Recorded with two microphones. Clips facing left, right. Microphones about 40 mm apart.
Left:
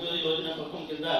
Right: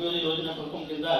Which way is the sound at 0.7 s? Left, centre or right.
Right.